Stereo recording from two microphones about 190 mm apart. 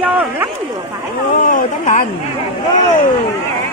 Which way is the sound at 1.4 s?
45° left (ahead or behind).